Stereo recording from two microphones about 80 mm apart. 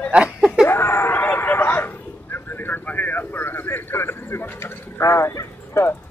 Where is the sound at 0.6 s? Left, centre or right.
Left.